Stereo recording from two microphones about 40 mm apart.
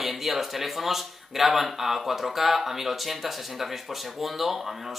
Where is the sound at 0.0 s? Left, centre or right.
Centre.